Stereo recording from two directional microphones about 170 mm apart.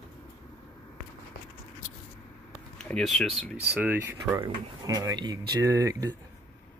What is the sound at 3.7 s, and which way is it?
Speech, 10° right (ahead or behind).